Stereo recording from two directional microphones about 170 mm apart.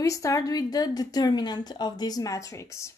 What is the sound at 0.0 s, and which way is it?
A woman's voice, 20° left (ahead or behind).